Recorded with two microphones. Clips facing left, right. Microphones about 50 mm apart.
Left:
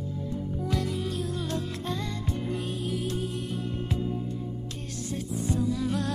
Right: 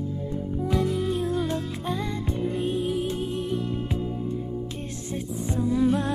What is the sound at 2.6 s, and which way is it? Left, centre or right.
Music, right.